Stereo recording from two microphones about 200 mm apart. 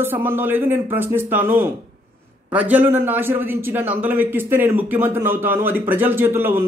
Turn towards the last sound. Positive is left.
turn(degrees=-10)  # may be behind; listen again after turning